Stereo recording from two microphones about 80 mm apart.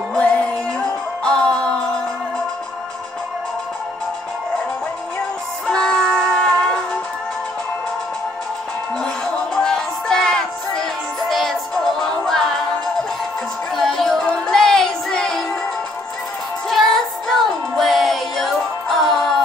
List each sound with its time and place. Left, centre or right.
0.1 s music: centre
5.7 s music: centre
9.6 s music: centre
13.7 s music: centre
16.6 s music: centre